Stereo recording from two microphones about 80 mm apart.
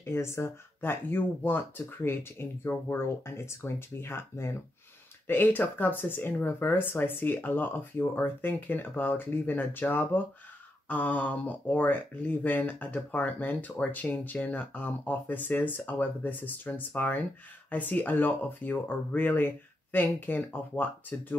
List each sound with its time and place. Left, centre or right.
0.0 s speech: left